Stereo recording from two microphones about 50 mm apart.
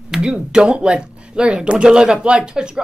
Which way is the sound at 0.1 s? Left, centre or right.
Centre.